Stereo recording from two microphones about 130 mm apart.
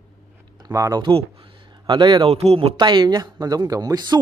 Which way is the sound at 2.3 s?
50° right (ahead or behind).